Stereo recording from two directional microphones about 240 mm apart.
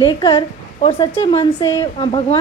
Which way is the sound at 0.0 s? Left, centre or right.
Centre.